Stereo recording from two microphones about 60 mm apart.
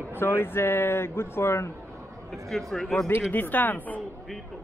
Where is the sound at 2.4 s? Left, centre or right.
Centre.